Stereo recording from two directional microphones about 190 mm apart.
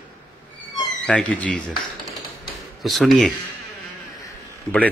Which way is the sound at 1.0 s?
5° left (ahead or behind).